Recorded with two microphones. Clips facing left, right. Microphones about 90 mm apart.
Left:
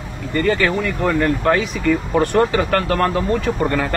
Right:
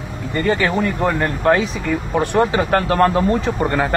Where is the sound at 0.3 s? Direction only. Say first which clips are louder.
Left 1 dB; 25° right (ahead or behind).